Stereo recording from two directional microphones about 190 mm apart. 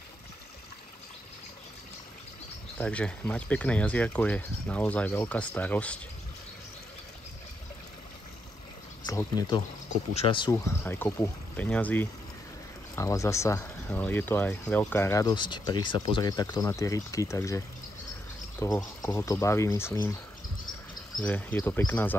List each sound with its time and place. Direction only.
2.8 s speech: 5° left (ahead or behind)
9.0 s speech: 20° left (ahead or behind)
21.2 s speech: 10° left (ahead or behind)